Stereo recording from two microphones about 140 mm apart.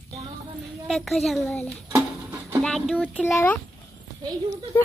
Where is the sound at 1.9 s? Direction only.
20° right (ahead or behind).